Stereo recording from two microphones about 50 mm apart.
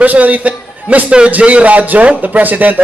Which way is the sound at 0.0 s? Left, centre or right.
Right.